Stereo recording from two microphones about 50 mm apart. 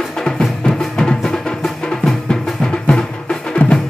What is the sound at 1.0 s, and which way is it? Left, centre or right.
Music, centre.